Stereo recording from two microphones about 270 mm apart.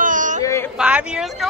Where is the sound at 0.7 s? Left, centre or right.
Centre.